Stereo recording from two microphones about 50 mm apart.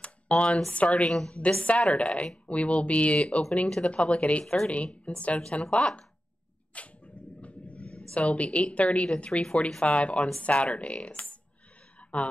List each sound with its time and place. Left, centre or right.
0.0 s a sound: left
0.7 s a woman's voice: left
3.6 s speech: centre
3.9 s a woman's voice: left
6.7 s a sound: left
8.1 s a woman's voice: left
9.8 s a woman's voice: left